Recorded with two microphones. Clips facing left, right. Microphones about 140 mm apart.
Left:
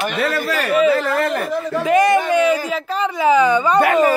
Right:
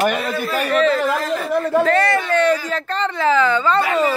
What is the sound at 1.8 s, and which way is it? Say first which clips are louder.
A woman's voice: left 3 dB; 15° left (ahead or behind).